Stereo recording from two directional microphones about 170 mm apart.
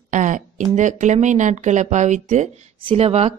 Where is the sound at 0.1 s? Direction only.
50° right (ahead or behind).